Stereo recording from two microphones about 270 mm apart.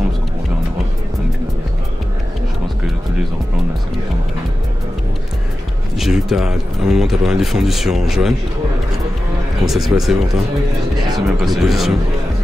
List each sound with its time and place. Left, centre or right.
5.9 s speech: centre
9.7 s speech: centre